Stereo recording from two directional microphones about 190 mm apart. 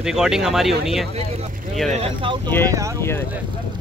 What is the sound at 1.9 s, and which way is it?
Speech, 30° right (ahead or behind).